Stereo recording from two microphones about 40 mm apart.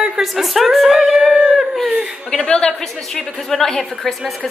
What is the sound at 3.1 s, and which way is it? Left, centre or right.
A woman's voice, centre.